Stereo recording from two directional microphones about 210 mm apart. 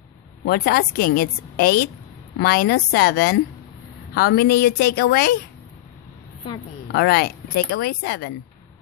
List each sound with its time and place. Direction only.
0.5 s a woman's voice: 45° left (ahead or behind)
6.9 s a woman's voice: 50° left (ahead or behind)